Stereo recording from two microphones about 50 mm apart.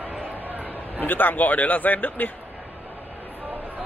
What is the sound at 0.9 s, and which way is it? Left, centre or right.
Speech, left.